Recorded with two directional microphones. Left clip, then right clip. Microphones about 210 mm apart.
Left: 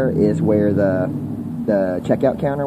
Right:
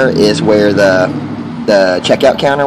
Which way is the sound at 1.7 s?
5° right (ahead or behind).